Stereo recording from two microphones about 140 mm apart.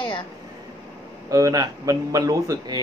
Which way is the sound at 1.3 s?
25° right (ahead or behind).